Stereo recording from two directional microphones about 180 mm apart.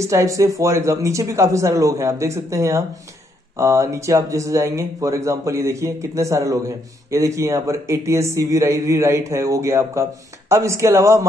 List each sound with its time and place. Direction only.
0.0 s speech: 15° right (ahead or behind)